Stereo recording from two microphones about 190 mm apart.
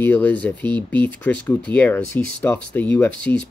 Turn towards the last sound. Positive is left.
turn(degrees=10)  # may be behind; listen again after turning